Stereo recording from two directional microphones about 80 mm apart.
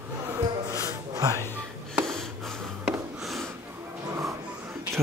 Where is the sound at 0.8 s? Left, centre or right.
Right.